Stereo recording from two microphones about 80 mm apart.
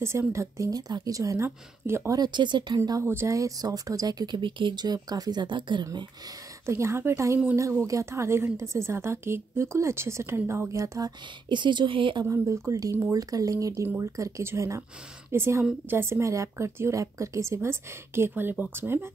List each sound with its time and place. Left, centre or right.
0.0 s a woman's voice: right
2.0 s speech: right
2.8 s a woman's voice: right
3.1 s a woman's voice: right
3.3 s a woman's voice: right
4.4 s speech: right
6.6 s a woman's voice: right
11.4 s speech: right
12.3 s a woman's voice: right
13.1 s a woman's voice: right